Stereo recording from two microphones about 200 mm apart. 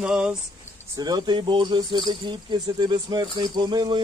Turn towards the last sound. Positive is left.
turn(degrees=-20)  # may be behind; listen again after turning